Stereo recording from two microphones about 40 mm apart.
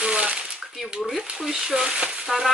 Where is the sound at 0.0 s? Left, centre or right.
Right.